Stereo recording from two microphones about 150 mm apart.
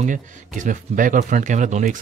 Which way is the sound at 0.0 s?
60° right (ahead or behind).